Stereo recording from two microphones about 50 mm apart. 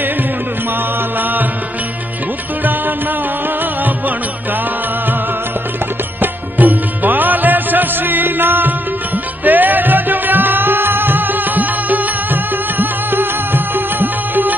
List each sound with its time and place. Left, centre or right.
6.2 s music: right